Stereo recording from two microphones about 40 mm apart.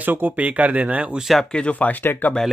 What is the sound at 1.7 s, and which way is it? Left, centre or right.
Speech, left.